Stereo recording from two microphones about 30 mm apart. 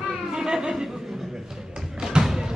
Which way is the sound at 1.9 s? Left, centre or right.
Right.